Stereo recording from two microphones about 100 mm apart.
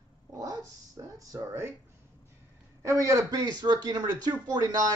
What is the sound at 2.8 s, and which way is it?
Speech, 30° right (ahead or behind).